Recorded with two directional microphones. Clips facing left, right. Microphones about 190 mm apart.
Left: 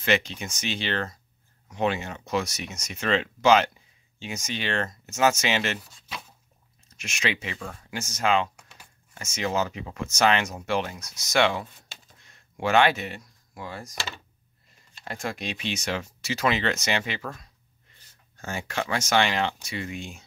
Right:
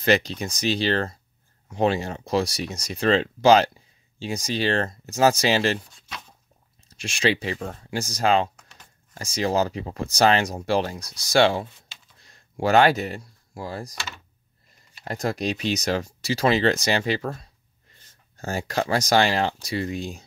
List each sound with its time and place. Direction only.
0.0 s speech: 35° right (ahead or behind)
6.0 s a sound: 5° left (ahead or behind)
6.9 s speech: 30° right (ahead or behind)
8.5 s a sound: 10° left (ahead or behind)
9.1 s speech: 35° right (ahead or behind)
13.9 s speech: 30° left (ahead or behind)
15.0 s speech: 40° right (ahead or behind)